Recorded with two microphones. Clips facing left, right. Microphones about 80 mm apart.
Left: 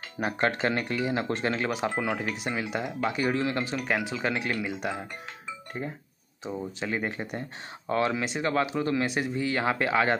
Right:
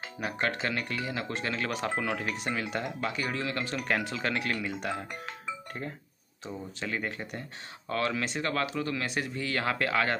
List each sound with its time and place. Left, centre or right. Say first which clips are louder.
0.2 s speech: left 5 dB; left
1.6 s speech: left 3 dB; centre
3.7 s speech: left 2 dB; centre